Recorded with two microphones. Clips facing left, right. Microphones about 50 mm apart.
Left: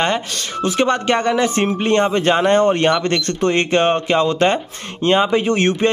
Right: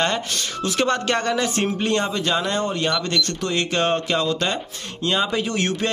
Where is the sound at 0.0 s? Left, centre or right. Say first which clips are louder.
Left 3 dB; left.